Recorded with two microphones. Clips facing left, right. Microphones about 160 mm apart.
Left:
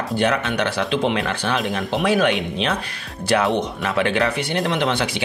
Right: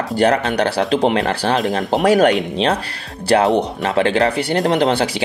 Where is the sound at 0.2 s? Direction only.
35° right (ahead or behind).